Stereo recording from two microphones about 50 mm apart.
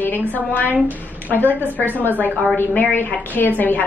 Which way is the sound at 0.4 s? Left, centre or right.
Left.